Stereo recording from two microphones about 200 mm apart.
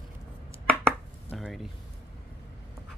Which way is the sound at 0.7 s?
5° left (ahead or behind).